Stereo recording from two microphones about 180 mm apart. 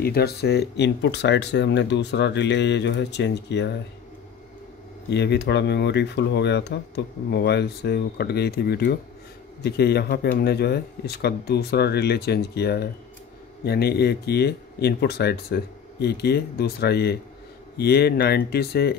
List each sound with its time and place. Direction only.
0.0 s speech: 60° left (ahead or behind)
5.1 s speech: 70° left (ahead or behind)